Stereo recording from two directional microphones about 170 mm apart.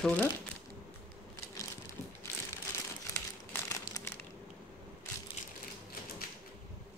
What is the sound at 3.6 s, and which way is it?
Crumpling, 15° left (ahead or behind).